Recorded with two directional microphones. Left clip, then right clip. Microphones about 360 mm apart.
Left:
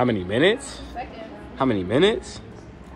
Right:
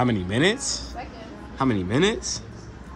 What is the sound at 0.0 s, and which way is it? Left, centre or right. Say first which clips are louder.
Speech: left 2 dB; centre.